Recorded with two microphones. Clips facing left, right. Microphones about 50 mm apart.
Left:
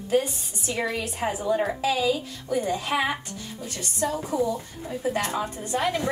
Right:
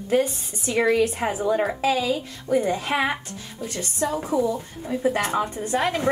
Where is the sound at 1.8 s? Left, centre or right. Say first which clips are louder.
Right 1 dB; right.